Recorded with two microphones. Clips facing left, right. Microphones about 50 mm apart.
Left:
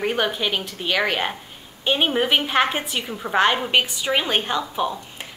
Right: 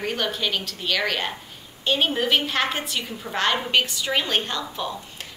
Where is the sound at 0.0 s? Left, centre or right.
Left.